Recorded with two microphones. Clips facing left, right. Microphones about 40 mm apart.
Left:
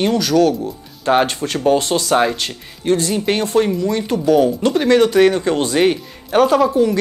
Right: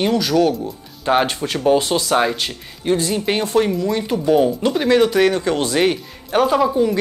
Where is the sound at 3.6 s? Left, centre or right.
Centre.